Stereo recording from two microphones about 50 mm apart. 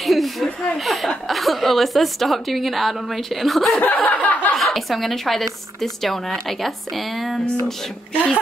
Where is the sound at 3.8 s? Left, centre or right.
Left.